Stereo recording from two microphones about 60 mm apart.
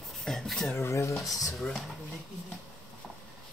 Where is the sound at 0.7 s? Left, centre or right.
Left.